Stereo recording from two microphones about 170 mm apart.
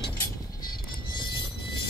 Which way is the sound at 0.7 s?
25° left (ahead or behind).